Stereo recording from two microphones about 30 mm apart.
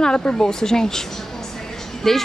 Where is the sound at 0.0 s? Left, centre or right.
Left.